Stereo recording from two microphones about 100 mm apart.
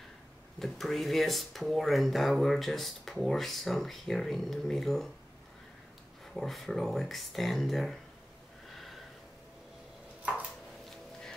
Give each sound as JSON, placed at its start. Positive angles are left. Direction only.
{"t": 0.6, "sound": "speech", "side_deg": 0}
{"t": 6.3, "sound": "speech", "side_deg": 0}
{"t": 8.7, "sound": "snort", "side_deg": 0}